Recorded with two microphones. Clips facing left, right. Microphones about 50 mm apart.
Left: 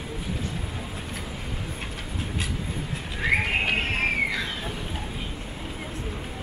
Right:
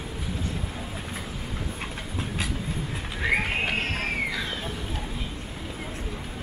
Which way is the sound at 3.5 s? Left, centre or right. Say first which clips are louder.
Left 2 dB; centre.